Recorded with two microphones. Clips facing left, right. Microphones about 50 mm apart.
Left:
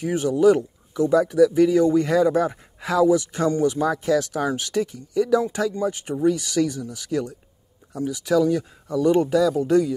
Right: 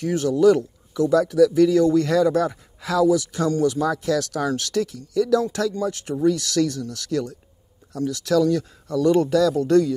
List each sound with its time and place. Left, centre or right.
0.0 s speech: centre